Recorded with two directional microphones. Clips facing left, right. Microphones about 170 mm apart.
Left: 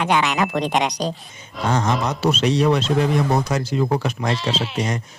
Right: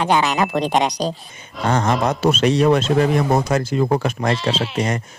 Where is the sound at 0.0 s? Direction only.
35° right (ahead or behind).